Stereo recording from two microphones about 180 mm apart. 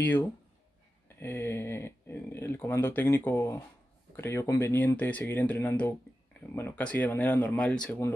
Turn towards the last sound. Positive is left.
turn(degrees=5)  # may be behind; listen again after turning